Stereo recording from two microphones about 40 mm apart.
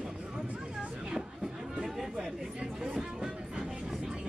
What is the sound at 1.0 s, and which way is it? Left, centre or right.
Chatter, centre.